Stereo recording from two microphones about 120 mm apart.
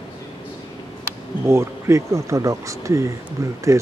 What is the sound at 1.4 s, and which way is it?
Speech, 25° right (ahead or behind).